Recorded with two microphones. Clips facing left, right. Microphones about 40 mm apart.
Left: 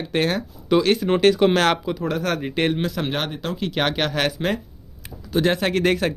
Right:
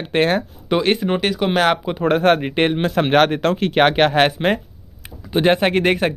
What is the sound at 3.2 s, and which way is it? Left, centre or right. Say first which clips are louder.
Speech: right 10 dB; right.